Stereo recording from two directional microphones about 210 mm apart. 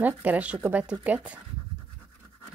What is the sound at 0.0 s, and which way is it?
A woman's voice, 5° right (ahead or behind).